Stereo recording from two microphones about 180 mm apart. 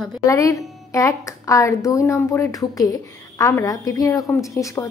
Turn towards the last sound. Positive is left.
turn(degrees=15)  # may be behind; listen again after turning